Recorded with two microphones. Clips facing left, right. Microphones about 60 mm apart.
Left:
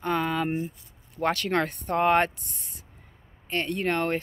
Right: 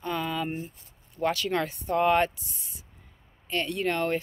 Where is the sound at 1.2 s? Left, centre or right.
Left.